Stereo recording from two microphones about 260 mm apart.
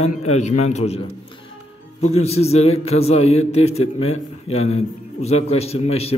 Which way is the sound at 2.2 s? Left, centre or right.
Left.